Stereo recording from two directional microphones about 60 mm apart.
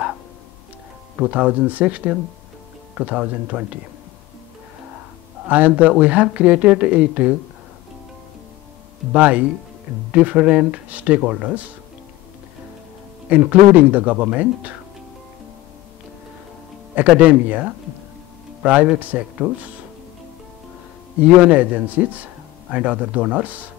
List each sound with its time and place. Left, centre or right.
1.2 s speech: right
5.5 s speech: right
9.1 s speech: right
13.3 s speech: right
16.9 s speech: right
21.2 s speech: right